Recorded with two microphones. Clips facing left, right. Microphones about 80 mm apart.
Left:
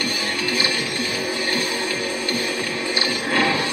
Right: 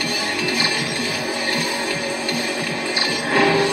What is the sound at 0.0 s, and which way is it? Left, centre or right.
Music, centre.